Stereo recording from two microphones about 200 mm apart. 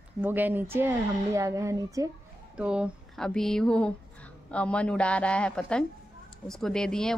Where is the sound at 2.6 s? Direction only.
5° right (ahead or behind).